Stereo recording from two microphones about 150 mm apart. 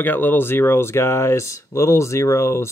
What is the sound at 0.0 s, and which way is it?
Speech, 10° left (ahead or behind).